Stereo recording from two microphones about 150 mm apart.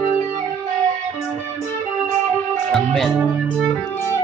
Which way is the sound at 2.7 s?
5° left (ahead or behind).